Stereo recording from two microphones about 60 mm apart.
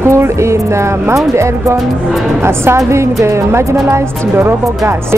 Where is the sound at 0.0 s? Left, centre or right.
Right.